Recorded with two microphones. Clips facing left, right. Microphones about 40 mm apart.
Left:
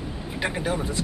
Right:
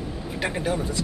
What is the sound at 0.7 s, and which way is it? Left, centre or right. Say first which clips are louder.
Speech: right 1 dB; centre.